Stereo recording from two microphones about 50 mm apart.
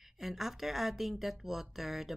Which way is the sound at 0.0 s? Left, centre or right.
Centre.